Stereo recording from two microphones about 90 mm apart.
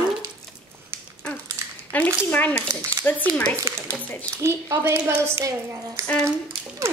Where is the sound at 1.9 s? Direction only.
20° left (ahead or behind).